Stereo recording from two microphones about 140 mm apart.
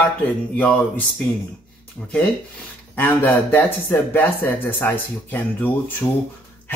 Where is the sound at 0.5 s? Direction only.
10° left (ahead or behind).